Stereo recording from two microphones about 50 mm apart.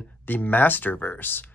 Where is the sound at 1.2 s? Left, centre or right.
Left.